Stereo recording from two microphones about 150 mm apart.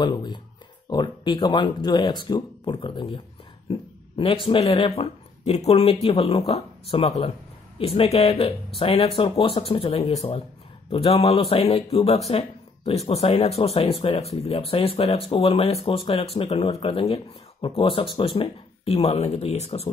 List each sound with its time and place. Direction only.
0.0 s speech: 30° left (ahead or behind); by 19.9 s 45° left (ahead or behind)